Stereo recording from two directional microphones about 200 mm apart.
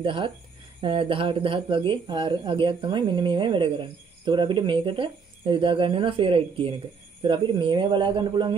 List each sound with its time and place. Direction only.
0.0 s speech: 25° right (ahead or behind)